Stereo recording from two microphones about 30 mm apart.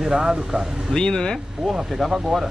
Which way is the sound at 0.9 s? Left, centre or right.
Left.